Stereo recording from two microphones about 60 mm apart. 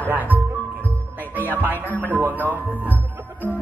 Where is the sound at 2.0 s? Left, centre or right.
Right.